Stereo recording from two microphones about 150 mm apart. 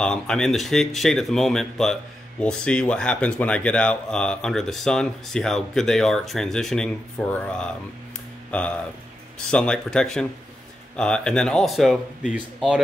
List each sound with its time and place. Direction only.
0.0 s speech: 5° left (ahead or behind)